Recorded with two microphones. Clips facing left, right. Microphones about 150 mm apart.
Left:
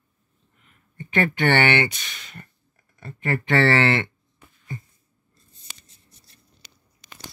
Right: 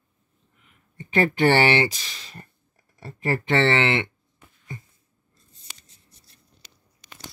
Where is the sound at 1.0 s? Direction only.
30° right (ahead or behind).